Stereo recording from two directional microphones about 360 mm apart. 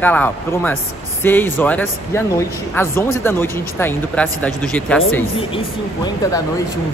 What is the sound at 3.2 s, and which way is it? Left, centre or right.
Speech, centre.